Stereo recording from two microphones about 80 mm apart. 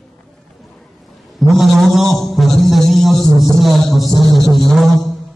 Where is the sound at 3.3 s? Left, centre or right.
Right.